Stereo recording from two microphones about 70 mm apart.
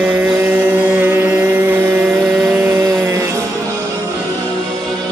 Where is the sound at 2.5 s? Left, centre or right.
Right.